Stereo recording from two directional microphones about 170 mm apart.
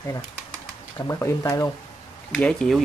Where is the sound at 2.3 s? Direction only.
5° left (ahead or behind).